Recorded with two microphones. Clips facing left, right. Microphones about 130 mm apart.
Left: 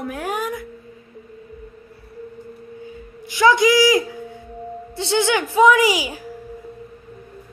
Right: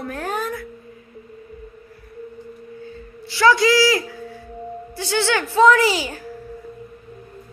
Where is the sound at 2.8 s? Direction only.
15° left (ahead or behind).